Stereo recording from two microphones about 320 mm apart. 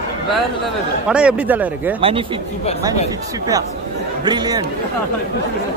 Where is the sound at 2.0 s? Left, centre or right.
Centre.